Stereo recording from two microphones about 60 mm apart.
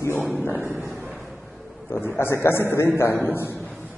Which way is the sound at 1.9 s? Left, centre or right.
Left.